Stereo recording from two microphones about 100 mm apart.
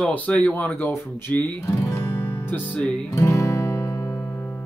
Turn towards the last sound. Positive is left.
turn(degrees=20)  # may be behind; listen again after turning